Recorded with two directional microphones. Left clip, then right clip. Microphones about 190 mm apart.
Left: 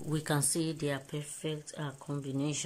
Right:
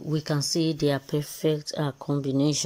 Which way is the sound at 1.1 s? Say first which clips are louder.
Right 13 dB; 30° right (ahead or behind).